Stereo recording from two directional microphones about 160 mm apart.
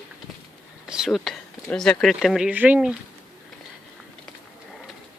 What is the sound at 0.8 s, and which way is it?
Speech, 5° right (ahead or behind).